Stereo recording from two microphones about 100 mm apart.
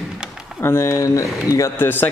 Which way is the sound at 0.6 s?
25° left (ahead or behind).